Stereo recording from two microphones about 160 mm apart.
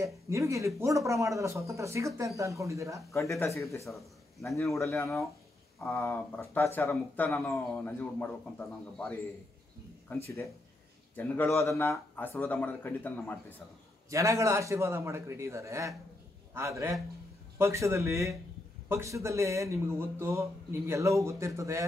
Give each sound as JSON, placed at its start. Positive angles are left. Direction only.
{"t": 0.0, "sound": "speech", "side_deg": -20}
{"t": 3.1, "sound": "speech", "side_deg": 20}
{"t": 5.8, "sound": "speech", "side_deg": 15}
{"t": 14.1, "sound": "a man's voice", "side_deg": -20}